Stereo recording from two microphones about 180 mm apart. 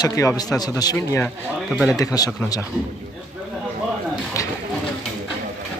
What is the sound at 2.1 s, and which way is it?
Speech, 20° left (ahead or behind).